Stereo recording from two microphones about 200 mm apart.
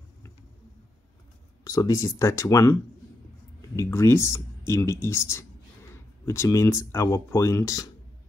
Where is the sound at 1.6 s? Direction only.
15° left (ahead or behind).